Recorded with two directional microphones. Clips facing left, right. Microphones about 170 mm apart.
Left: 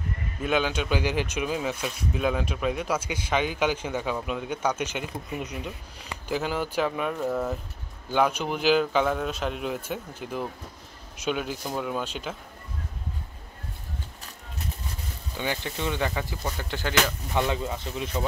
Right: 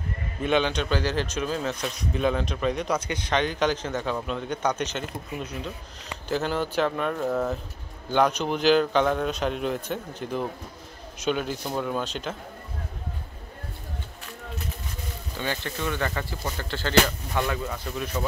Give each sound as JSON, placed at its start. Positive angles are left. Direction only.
{"t": 0.4, "sound": "a man's voice", "side_deg": 5}
{"t": 15.3, "sound": "a man's voice", "side_deg": 15}